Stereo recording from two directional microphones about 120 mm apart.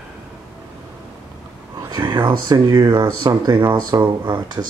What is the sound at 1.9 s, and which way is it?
Speech, 35° right (ahead or behind).